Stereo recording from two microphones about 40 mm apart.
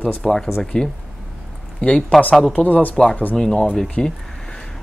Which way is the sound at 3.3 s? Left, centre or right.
Centre.